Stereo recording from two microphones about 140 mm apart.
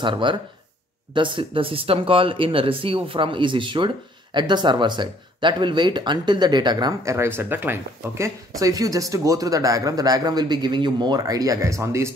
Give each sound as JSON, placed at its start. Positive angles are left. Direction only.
{"t": 0.0, "sound": "speech", "side_deg": -35}